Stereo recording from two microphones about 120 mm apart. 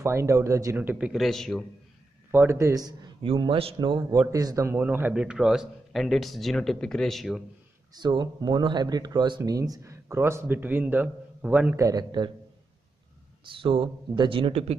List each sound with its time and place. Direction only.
0.0 s a man's voice: 25° right (ahead or behind)
0.7 s speech: 10° right (ahead or behind); by 1.7 s 5° left (ahead or behind)
2.3 s a man's voice: 25° right (ahead or behind)
3.3 s speech: 50° right (ahead or behind)
4.3 s speech: 30° right (ahead or behind)
4.6 s speech: 20° right (ahead or behind); by 7.4 s centre (ahead or behind)
7.9 s a man's voice: 40° right (ahead or behind); by 11.7 s 10° right (ahead or behind)
11.7 s speech: 30° right (ahead or behind)
13.5 s speech: 45° right (ahead or behind)